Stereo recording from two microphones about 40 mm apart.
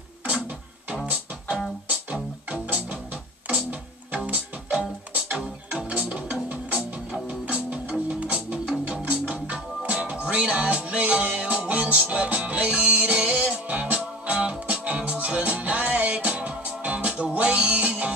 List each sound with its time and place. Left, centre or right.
2.5 s music: right
4.3 s music: right
5.3 s music: centre; by 14.3 s right
14.3 s music: right